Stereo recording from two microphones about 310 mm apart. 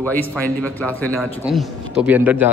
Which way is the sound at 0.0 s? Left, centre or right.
Centre.